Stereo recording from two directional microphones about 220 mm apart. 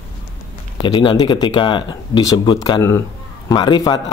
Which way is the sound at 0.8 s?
20° left (ahead or behind).